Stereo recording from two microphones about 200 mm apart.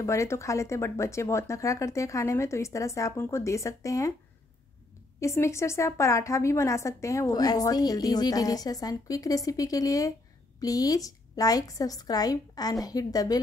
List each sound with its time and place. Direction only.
0.0 s a woman's voice: 15° left (ahead or behind)
5.2 s a woman's voice: 15° left (ahead or behind)